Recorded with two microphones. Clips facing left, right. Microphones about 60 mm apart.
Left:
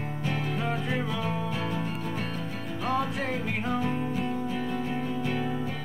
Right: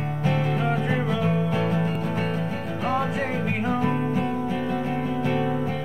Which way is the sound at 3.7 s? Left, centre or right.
Right.